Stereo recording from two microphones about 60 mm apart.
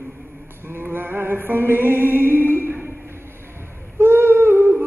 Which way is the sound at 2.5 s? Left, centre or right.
Right.